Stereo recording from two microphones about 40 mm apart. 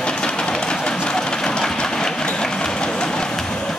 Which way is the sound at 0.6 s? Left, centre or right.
Left.